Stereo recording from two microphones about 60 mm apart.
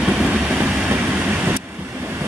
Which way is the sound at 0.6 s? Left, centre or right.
Right.